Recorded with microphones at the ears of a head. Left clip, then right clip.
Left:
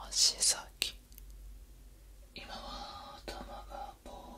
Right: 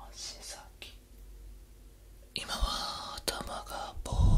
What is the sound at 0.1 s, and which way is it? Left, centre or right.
Whispering, left.